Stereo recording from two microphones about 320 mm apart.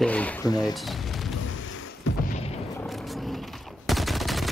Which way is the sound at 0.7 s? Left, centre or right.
Centre.